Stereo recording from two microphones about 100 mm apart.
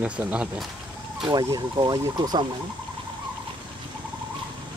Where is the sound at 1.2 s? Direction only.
40° right (ahead or behind).